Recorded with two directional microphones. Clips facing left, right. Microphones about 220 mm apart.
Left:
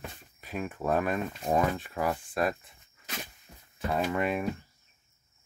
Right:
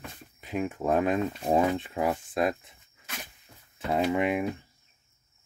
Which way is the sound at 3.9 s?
15° right (ahead or behind).